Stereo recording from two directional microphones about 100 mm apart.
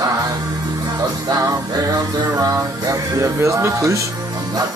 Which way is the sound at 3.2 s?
30° right (ahead or behind).